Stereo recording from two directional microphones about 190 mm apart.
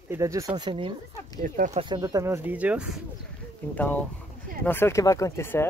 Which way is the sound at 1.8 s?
20° right (ahead or behind).